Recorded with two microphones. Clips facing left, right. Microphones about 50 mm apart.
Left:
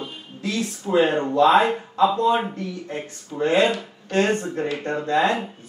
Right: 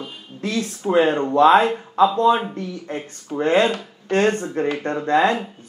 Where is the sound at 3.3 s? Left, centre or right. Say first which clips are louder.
Right 2 dB; right.